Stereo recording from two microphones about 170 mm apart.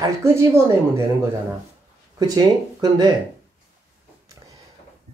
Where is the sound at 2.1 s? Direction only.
25° right (ahead or behind).